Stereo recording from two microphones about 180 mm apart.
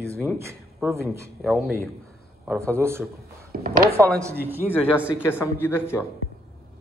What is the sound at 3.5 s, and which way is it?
Speech, 55° right (ahead or behind).